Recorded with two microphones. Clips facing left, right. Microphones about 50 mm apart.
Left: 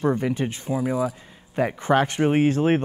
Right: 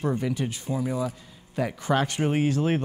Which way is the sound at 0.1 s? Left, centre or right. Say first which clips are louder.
Left 4 dB; left.